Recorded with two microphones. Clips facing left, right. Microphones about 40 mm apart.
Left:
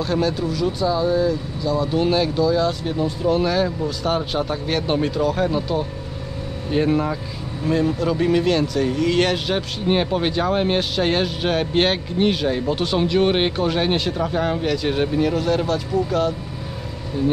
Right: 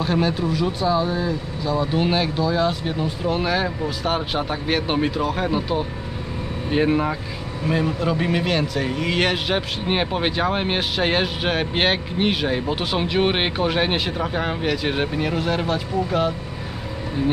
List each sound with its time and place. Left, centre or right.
0.0 s speech: centre